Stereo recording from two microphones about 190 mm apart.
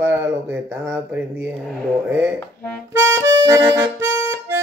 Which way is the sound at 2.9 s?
15° right (ahead or behind).